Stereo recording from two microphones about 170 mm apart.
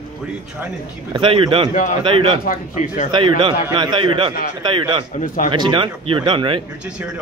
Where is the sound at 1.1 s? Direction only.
30° right (ahead or behind).